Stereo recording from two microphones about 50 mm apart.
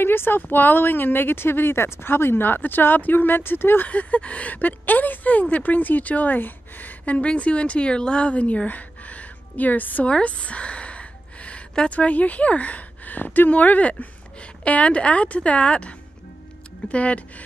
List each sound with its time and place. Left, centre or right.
0.0 s speech: left
7.2 s a woman's voice: left
10.0 s a sound: left
11.9 s speech: left
16.9 s speech: left